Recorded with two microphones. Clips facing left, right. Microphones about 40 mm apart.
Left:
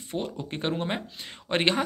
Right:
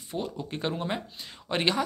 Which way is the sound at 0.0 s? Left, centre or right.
Left.